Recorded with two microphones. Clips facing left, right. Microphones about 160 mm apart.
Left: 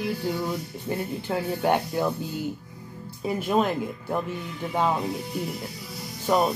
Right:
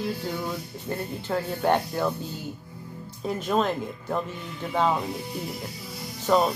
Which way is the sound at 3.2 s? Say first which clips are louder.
Left 1 dB; 10° left (ahead or behind).